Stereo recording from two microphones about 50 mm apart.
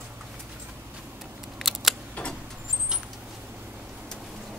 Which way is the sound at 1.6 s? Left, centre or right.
Centre.